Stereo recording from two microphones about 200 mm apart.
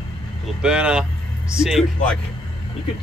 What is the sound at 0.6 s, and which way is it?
Speech, 5° right (ahead or behind).